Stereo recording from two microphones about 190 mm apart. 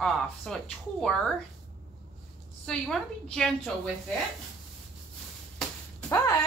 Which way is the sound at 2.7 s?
Centre (ahead or behind).